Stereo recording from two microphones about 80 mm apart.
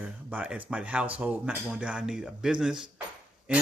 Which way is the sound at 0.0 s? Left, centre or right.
Centre.